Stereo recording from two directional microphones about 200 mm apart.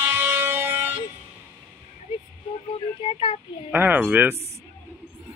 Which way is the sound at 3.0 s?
25° left (ahead or behind).